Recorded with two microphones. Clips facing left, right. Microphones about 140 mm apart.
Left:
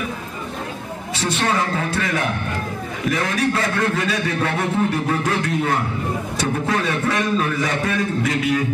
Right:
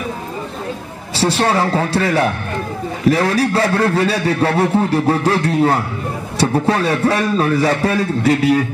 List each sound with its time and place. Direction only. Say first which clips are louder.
1.1 s a man's voice: right 6 dB; 35° right (ahead or behind)